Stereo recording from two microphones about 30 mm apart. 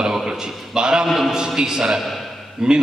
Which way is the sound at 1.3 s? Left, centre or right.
Right.